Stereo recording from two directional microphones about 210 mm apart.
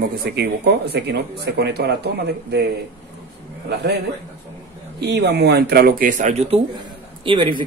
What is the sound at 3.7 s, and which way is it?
Speech, 55° right (ahead or behind).